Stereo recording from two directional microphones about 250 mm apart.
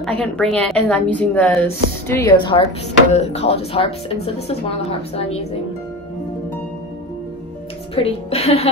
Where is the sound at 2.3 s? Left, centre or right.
Centre.